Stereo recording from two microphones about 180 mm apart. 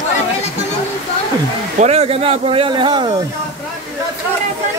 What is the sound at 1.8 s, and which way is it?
Speech, 35° right (ahead or behind).